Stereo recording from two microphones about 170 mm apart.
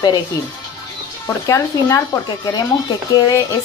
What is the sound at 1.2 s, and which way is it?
Speech, 20° left (ahead or behind).